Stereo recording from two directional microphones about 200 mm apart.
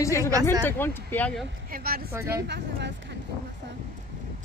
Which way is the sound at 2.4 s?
60° right (ahead or behind).